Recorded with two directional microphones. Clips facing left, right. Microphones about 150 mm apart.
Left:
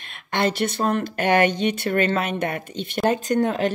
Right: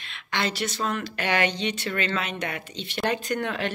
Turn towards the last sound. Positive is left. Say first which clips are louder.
# left 7 dB
turn(degrees=40)  # may be behind; listen again after turning